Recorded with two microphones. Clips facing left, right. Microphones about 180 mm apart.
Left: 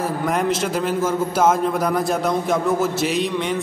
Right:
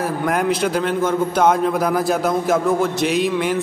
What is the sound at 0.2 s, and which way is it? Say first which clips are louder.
A man's voice: right 3 dB; centre (ahead or behind).